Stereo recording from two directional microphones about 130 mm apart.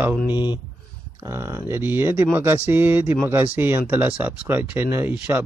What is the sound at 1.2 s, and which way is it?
Speech, 20° right (ahead or behind).